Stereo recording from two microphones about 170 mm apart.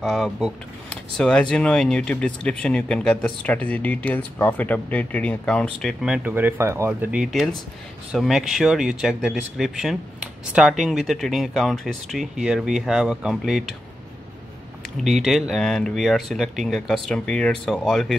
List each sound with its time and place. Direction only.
0.0 s speech: centre (ahead or behind)
15.0 s speech: centre (ahead or behind)